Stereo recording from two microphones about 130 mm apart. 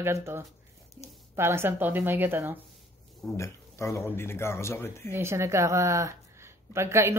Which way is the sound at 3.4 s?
20° left (ahead or behind).